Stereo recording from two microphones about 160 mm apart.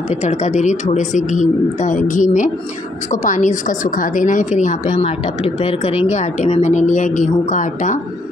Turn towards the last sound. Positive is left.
turn(degrees=50)  # may be behind; listen again after turning